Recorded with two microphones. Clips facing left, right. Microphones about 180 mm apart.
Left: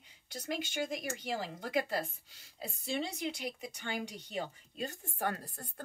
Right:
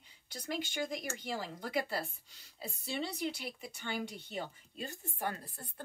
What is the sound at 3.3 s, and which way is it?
A woman's voice, 45° left (ahead or behind).